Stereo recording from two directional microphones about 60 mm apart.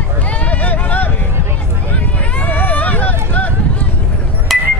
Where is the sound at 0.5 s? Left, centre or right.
Left.